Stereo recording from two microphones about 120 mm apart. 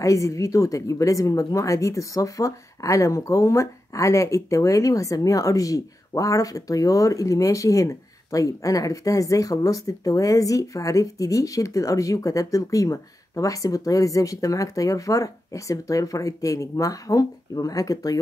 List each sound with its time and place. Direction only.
0.0 s a woman's voice: 25° left (ahead or behind)